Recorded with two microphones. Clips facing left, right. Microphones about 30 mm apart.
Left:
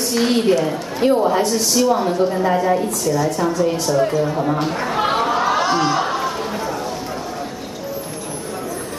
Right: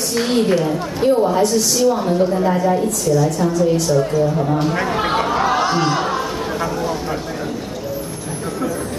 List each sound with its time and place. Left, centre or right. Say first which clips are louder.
0.1 s speech: even; centre
4.8 s chatter: even; centre